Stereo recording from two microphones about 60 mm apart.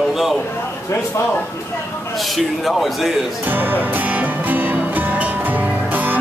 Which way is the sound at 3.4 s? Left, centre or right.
Right.